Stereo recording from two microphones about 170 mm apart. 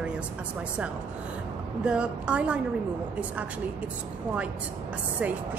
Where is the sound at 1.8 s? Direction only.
5° right (ahead or behind).